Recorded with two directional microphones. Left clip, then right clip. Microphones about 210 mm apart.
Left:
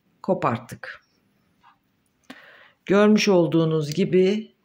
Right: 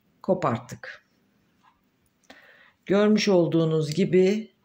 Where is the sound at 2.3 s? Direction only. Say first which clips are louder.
Left 5 dB; 15° left (ahead or behind).